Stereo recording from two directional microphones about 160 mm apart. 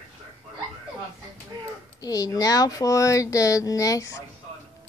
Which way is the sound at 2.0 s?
20° left (ahead or behind).